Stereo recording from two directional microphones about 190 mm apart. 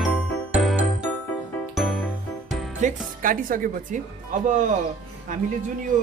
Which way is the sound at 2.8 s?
45° right (ahead or behind).